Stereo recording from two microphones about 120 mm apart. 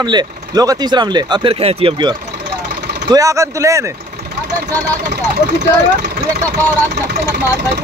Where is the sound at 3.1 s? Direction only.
30° right (ahead or behind).